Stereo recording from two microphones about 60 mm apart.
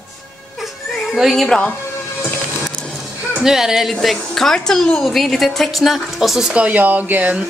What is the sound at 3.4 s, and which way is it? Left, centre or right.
Speech, centre.